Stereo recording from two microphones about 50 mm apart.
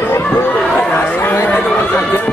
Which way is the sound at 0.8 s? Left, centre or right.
Left.